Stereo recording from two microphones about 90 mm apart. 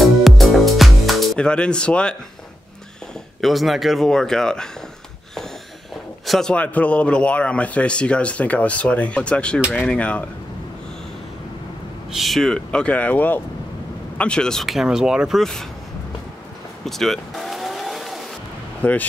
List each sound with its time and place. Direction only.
0.0 s music: centre (ahead or behind)
1.4 s speech: 10° left (ahead or behind)
3.3 s speech: centre (ahead or behind)
6.2 s a man's voice: centre (ahead or behind)
6.5 s speech: 15° left (ahead or behind)
12.1 s speech: centre (ahead or behind)
16.8 s car: 5° left (ahead or behind)
18.8 s speech: 15° left (ahead or behind)